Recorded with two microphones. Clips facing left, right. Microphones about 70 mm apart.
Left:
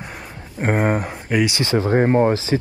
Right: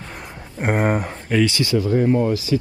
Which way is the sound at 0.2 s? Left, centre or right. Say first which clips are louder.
Left 1 dB; centre.